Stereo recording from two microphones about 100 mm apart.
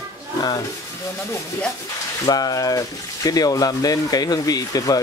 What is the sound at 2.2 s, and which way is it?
A man's voice, 40° left (ahead or behind).